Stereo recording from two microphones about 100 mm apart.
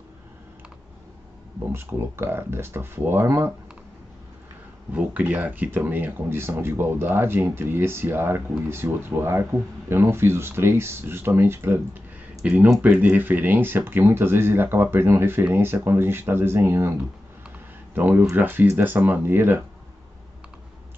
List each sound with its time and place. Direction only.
1.7 s speech: 25° right (ahead or behind)
4.9 s speech: 15° right (ahead or behind)